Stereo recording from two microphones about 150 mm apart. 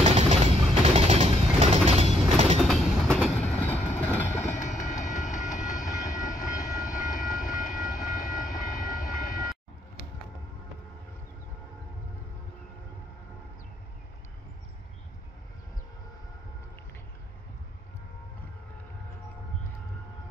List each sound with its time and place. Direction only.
0.0 s mechanisms: 45° right (ahead or behind)
2.6 s train: centre (ahead or behind)
4.6 s train: 55° left (ahead or behind)
6.0 s vehicle: 60° left (ahead or behind)